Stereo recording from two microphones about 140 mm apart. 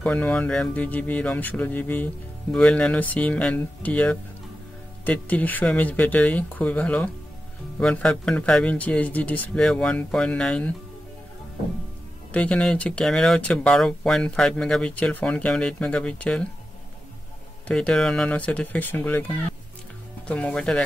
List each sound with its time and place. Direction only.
0.0 s speech: 10° left (ahead or behind)
12.3 s speech: 10° left (ahead or behind)
17.6 s speech: 5° left (ahead or behind)